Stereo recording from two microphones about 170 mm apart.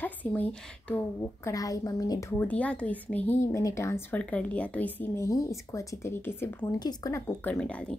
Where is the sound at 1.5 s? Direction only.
20° left (ahead or behind).